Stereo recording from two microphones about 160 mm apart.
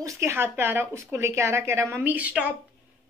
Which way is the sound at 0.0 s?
15° right (ahead or behind).